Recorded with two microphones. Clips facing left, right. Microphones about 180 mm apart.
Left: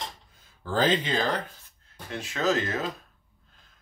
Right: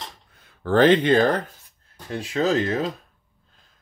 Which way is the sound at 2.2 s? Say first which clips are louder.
Right 5 dB; 35° right (ahead or behind).